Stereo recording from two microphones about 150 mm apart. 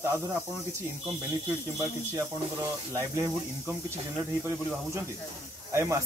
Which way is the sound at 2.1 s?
20° right (ahead or behind).